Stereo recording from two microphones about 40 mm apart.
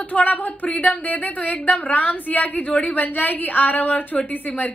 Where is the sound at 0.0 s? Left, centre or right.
Left.